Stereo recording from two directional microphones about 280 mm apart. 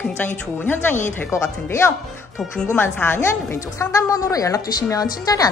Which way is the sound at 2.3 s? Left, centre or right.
Centre.